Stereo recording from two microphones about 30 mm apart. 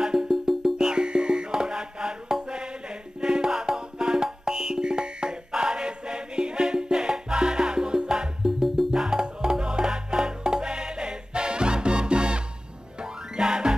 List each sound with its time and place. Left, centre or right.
0.3 s music: centre
0.7 s music: right
8.5 s music: centre
8.9 s music: right